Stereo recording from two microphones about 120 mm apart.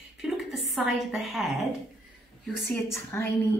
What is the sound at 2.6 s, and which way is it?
Speech, 20° left (ahead or behind).